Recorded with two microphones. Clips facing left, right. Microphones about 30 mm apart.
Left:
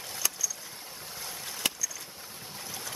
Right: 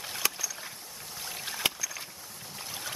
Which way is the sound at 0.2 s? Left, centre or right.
Right.